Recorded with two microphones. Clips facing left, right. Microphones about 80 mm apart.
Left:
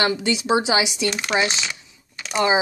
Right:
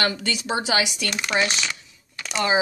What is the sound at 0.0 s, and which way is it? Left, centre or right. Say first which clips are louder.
Speech: left 4 dB; centre.